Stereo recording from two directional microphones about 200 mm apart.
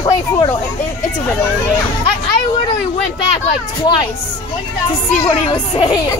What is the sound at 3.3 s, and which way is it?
Speech, 30° left (ahead or behind).